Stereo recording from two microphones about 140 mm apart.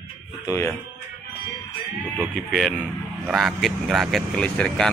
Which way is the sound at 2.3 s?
5° left (ahead or behind).